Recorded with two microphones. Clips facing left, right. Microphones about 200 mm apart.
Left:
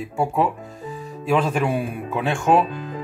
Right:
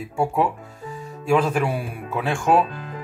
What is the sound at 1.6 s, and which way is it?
Speech, 5° right (ahead or behind).